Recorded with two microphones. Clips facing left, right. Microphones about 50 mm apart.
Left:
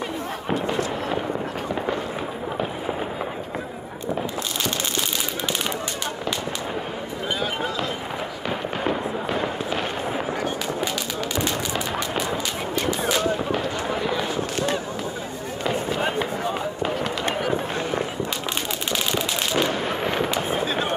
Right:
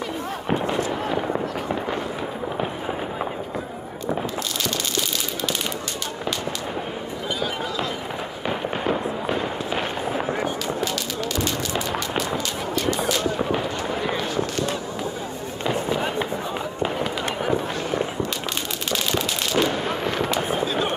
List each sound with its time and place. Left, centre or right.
9.7 s fireworks: centre
18.9 s fireworks: centre
20.4 s fireworks: left